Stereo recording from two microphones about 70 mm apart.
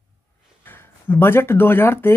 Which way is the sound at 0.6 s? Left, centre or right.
Left.